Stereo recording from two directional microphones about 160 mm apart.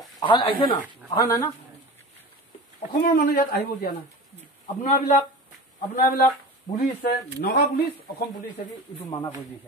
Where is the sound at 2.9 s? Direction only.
70° left (ahead or behind).